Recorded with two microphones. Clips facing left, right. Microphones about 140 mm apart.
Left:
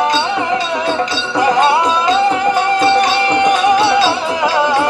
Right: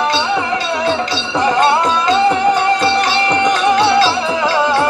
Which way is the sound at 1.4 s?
10° left (ahead or behind).